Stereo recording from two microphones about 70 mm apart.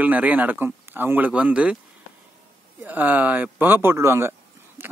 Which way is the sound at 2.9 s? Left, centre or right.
Right.